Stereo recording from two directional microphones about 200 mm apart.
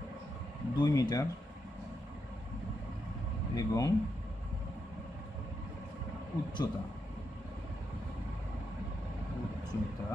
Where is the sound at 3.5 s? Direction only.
15° left (ahead or behind).